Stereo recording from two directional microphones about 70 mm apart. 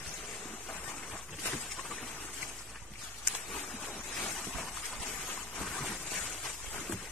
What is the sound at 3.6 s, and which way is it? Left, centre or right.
Boat, centre.